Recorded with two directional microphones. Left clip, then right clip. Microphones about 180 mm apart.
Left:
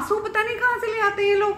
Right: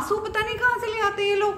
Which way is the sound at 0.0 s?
15° left (ahead or behind).